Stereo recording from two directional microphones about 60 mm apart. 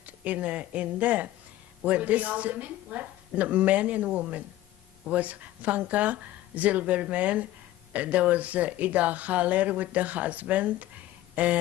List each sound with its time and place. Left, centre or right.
0.0 s speech: right